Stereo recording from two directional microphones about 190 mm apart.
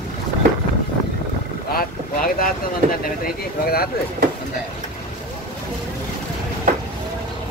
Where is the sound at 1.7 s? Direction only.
50° left (ahead or behind).